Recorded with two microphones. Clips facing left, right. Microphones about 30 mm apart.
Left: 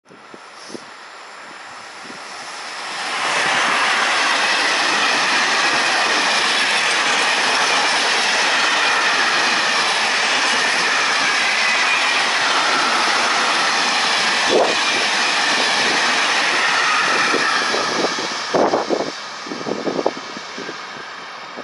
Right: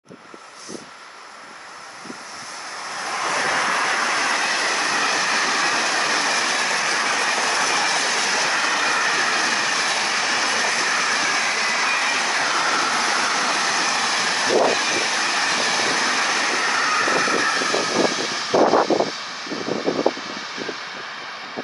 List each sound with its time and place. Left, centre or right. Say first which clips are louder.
2.9 s vehicle: left 3 dB; left
8.4 s train: left 4 dB; left
17.6 s vehicle: left 2 dB; left
17.9 s vehicle: even; centre